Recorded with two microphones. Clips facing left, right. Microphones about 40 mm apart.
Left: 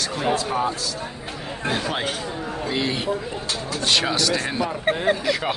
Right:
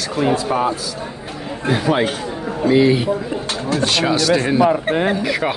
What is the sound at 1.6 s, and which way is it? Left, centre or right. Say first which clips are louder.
Speech: right 8 dB; centre.